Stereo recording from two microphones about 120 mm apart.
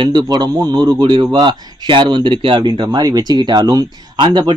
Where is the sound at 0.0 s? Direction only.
40° right (ahead or behind).